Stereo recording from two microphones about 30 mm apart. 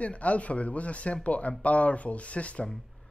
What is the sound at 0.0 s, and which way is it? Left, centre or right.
A man's voice, left.